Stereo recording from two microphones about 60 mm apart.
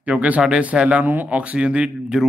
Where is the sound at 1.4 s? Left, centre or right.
Centre.